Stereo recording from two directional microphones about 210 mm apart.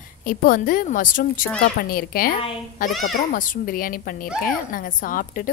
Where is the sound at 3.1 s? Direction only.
40° left (ahead or behind).